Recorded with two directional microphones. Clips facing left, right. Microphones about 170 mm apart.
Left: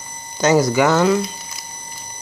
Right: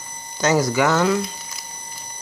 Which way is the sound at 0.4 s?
20° left (ahead or behind).